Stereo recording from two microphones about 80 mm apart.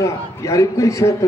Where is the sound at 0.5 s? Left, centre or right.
Left.